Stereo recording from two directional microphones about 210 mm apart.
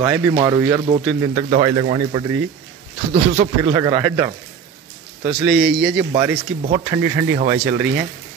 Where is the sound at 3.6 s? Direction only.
15° right (ahead or behind).